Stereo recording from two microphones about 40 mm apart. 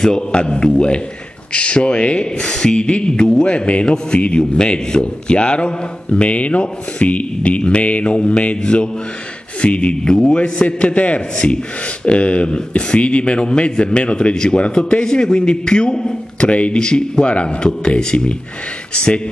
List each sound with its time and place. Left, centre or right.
0.0 s a man's voice: centre
16.8 s speech: left